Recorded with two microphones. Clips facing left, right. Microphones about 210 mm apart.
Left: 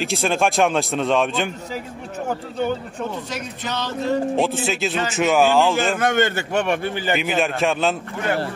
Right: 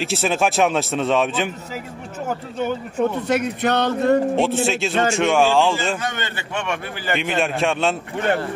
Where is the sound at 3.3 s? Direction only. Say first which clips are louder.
Right 9 dB; 60° right (ahead or behind).